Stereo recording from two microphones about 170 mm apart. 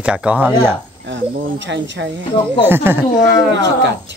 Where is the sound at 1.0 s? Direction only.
90° right.